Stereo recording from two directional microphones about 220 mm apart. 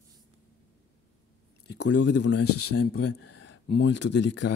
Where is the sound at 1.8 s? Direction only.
55° left (ahead or behind).